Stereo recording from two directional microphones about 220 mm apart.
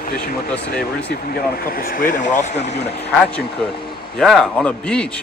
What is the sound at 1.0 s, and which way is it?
Speech, 45° left (ahead or behind).